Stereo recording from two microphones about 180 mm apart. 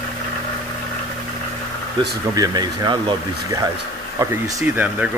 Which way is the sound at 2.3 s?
20° right (ahead or behind).